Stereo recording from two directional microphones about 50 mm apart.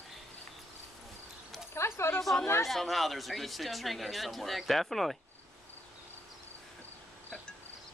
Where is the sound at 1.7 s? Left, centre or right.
Left.